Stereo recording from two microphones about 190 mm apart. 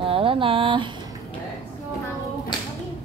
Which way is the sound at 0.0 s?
30° right (ahead or behind).